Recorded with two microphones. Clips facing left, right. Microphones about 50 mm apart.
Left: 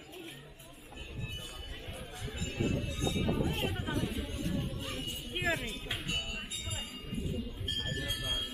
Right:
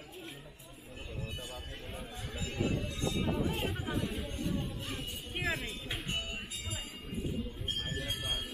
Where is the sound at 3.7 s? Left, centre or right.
Centre.